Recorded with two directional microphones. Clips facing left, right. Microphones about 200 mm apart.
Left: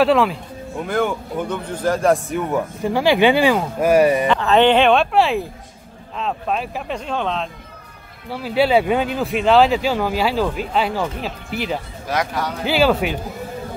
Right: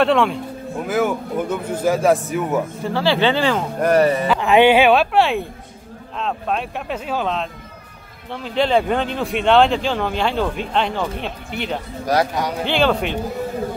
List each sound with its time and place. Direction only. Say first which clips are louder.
0.0 s speech: left 1 dB; centre (ahead or behind)
2.8 s speech: left 5 dB; 15° left (ahead or behind)
4.3 s speech: right 1 dB; 10° right (ahead or behind)
8.3 s speech: left 2 dB; 5° left (ahead or behind)
12.1 s a man's voice: right 4 dB; 40° right (ahead or behind)
12.6 s speech: left 3 dB; 5° left (ahead or behind)